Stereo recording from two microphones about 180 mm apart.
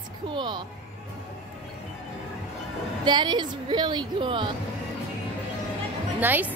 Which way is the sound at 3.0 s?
25° right (ahead or behind).